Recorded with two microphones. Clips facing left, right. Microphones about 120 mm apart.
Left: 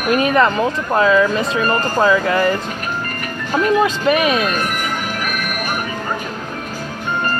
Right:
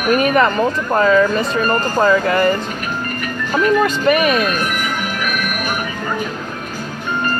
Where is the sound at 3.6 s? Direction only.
25° left (ahead or behind).